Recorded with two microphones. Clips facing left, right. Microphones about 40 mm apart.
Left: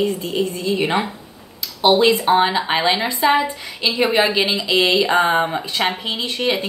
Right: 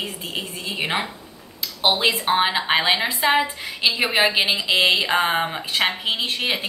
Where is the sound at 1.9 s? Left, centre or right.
Centre.